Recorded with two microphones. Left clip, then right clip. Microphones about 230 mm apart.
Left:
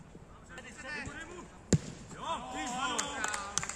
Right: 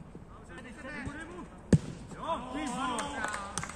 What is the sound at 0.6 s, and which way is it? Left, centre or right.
Music, left.